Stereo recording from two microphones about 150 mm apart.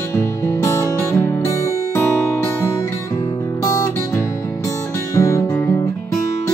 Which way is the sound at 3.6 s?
25° left (ahead or behind).